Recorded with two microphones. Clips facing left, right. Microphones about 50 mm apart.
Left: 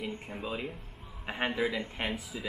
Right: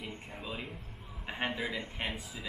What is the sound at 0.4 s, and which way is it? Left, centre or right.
Speech, centre.